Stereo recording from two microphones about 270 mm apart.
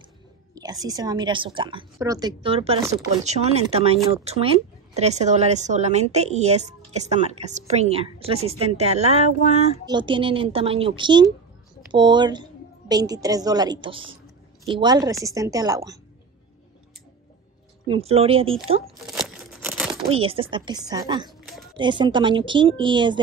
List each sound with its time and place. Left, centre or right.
0.6 s a woman's voice: centre
17.8 s speech: right
19.0 s tearing: centre
20.1 s a woman's voice: right